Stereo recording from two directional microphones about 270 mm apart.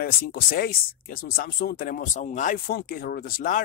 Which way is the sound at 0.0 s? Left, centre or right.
Left.